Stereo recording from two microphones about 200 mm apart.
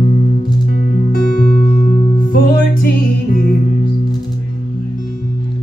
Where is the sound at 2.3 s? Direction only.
45° left (ahead or behind).